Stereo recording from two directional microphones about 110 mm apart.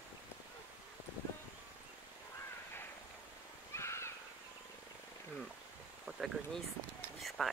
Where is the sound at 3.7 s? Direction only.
25° left (ahead or behind).